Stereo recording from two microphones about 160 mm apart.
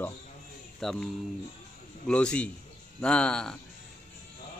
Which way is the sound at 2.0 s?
5° left (ahead or behind).